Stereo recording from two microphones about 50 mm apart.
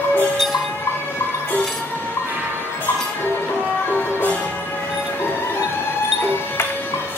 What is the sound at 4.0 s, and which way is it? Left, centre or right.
Music, left.